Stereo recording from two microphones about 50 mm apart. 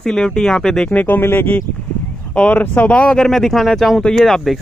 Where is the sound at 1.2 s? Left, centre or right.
Left.